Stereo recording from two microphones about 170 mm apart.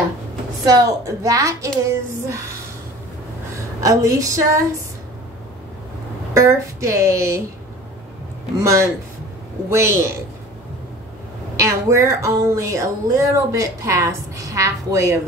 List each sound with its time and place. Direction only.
0.7 s a woman's voice: 20° right (ahead or behind)
3.8 s a woman's voice: 20° right (ahead or behind)
6.3 s a woman's voice: 15° right (ahead or behind)
8.5 s a woman's voice: 15° right (ahead or behind)
11.5 s a woman's voice: 15° right (ahead or behind)